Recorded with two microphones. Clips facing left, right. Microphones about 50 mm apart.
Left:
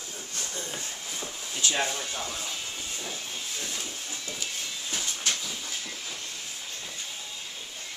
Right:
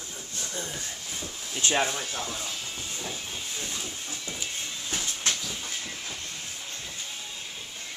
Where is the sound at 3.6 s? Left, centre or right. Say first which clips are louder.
Even; centre.